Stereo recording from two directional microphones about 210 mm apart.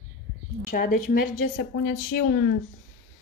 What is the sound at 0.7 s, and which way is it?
Speech, 40° left (ahead or behind).